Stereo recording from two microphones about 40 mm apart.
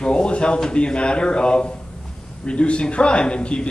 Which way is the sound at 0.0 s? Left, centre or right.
Left.